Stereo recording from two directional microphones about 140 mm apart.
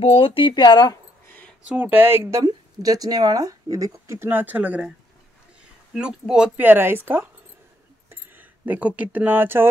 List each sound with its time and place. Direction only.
0.0 s speech: 40° left (ahead or behind)
1.2 s a sound: 10° left (ahead or behind)
1.7 s speech: 15° right (ahead or behind)
2.4 s speech: 25° right (ahead or behind)
5.9 s speech: 5° right (ahead or behind)
8.1 s speech: 10° right (ahead or behind)